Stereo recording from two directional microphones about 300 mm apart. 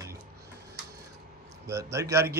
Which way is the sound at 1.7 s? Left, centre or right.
Centre.